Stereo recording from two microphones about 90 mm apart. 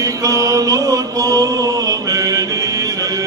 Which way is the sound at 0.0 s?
40° right (ahead or behind).